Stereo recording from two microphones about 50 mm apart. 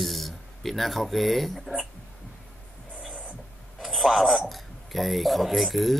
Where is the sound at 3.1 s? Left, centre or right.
Left.